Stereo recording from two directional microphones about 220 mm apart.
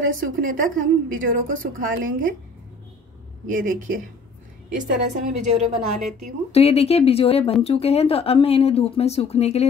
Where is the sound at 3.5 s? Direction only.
40° right (ahead or behind).